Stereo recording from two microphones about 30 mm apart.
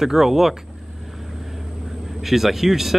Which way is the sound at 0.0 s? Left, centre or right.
Centre.